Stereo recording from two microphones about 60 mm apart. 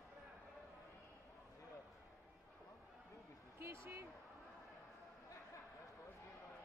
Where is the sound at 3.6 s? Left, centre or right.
Right.